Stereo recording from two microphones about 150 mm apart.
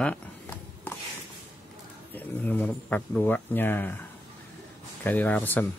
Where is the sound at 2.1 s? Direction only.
10° left (ahead or behind).